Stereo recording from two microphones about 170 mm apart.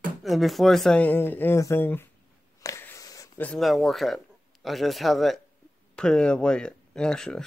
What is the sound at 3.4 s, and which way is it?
Speech, centre (ahead or behind).